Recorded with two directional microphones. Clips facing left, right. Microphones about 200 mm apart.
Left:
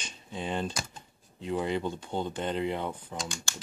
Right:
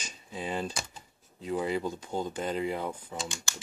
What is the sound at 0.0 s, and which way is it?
Speech, 5° right (ahead or behind).